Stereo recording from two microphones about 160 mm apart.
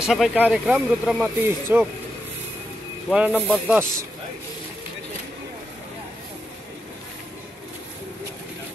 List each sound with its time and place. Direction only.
0.0 s speech: centre (ahead or behind)
1.7 s speech: 15° right (ahead or behind)
3.1 s speech: 5° right (ahead or behind)